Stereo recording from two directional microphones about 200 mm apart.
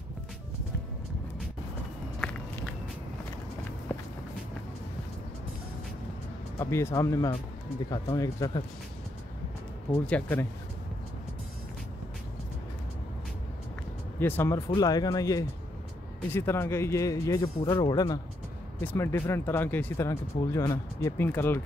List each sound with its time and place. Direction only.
6.6 s speech: 15° left (ahead or behind)
10.0 s speech: 5° left (ahead or behind)
14.2 s speech: 10° left (ahead or behind)